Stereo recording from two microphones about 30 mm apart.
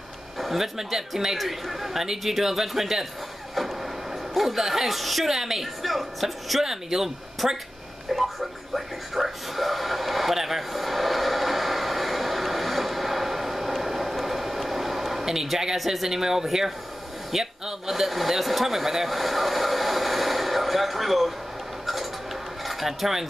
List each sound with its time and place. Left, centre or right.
0.4 s a man's voice: centre
6.6 s a man's voice: centre
8.1 s television: centre
15.8 s a man's voice: centre
17.3 s a sound: centre